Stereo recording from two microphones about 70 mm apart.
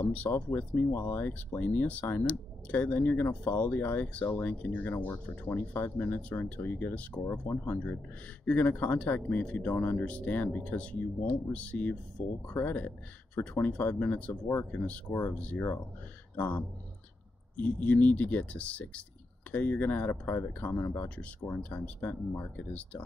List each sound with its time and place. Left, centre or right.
0.0 s speech: left